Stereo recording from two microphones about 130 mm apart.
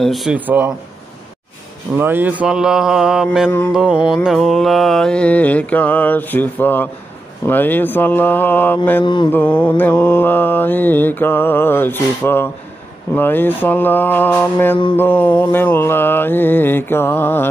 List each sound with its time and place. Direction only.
0.0 s mantra: centre (ahead or behind)
2.0 s mantra: 15° right (ahead or behind)
3.7 s music: 10° right (ahead or behind)
4.1 s mantra: centre (ahead or behind)
9.0 s mantra: 35° left (ahead or behind)
9.3 s mantra: 10° left (ahead or behind)